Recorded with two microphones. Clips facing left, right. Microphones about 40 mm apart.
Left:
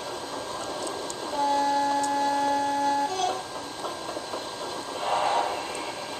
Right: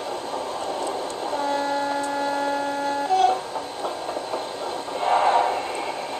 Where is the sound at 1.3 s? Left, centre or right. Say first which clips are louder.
Left 1 dB; centre.